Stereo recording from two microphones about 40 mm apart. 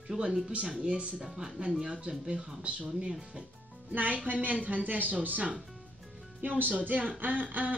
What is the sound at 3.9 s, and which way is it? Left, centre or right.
A woman's voice, right.